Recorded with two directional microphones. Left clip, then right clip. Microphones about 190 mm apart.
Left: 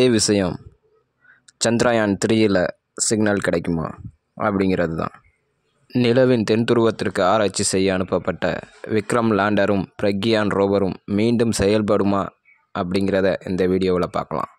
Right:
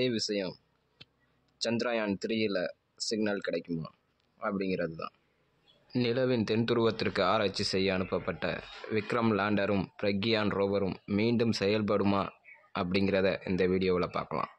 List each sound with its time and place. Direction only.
0.0 s speech: 65° left (ahead or behind); by 14.5 s 45° left (ahead or behind)